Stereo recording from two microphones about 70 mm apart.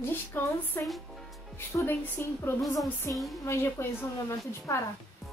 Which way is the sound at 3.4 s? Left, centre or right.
Left.